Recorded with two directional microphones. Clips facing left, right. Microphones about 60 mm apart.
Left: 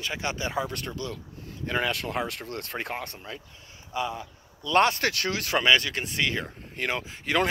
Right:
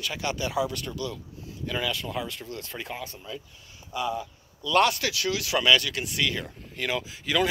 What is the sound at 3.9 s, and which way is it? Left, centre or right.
Speech, left.